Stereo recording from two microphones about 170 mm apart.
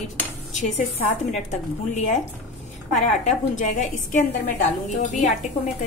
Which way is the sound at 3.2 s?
45° left (ahead or behind).